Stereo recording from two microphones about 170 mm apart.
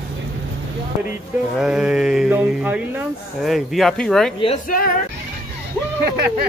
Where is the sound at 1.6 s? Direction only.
5° right (ahead or behind).